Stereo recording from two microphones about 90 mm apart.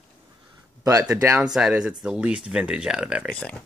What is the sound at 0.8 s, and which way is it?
Speech, 40° right (ahead or behind).